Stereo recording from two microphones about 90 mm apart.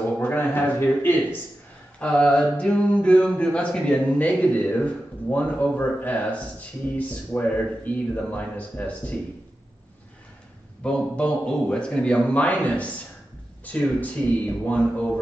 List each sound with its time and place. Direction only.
0.2 s a sound: 20° left (ahead or behind)
2.0 s speech: 15° left (ahead or behind)
10.8 s speech: 10° left (ahead or behind)